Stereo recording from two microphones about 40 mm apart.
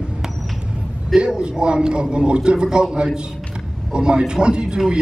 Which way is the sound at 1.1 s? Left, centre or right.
Right.